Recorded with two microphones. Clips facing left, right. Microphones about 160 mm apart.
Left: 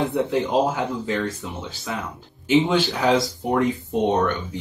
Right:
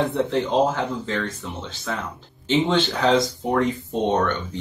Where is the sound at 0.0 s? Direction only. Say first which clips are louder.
Even; 15° left (ahead or behind).